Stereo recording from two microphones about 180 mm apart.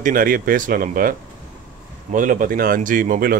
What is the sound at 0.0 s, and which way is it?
Speech, 50° right (ahead or behind).